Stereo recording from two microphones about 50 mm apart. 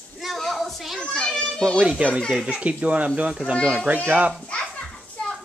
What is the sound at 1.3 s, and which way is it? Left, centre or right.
Children playing, centre.